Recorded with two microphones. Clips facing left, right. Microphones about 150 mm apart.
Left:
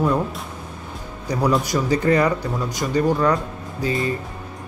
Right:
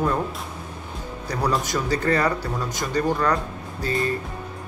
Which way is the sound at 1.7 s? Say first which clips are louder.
Left 4 dB; 15° left (ahead or behind).